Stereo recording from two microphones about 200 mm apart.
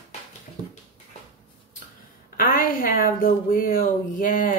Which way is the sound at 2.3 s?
45° left (ahead or behind).